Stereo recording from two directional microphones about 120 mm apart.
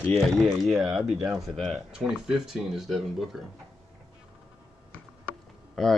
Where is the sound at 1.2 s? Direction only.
20° right (ahead or behind).